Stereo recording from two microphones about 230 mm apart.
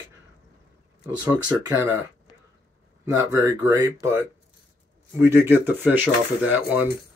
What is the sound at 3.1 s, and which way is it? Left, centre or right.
Speech, centre.